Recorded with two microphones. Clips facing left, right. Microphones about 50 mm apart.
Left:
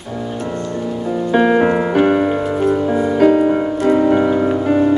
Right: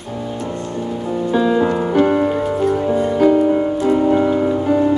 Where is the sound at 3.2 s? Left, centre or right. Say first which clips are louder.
Left 1 dB; left.